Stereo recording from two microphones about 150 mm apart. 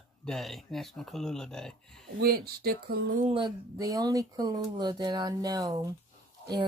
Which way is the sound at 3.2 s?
35° right (ahead or behind).